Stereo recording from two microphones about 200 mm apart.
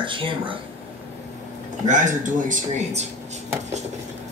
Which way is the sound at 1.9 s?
40° right (ahead or behind).